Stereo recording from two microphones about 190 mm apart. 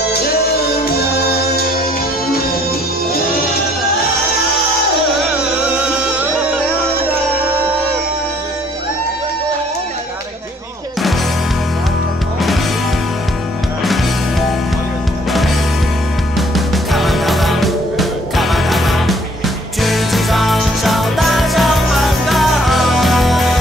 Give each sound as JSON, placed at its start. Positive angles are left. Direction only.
{"t": 0.0, "sound": "music", "side_deg": 60}
{"t": 5.6, "sound": "music", "side_deg": -5}
{"t": 16.3, "sound": "music", "side_deg": 0}